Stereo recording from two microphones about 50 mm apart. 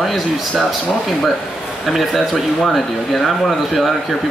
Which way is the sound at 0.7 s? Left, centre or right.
Centre.